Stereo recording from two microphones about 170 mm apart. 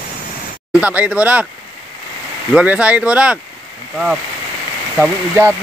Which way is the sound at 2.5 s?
10° right (ahead or behind).